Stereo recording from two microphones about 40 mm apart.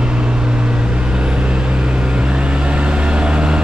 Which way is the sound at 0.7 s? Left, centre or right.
Right.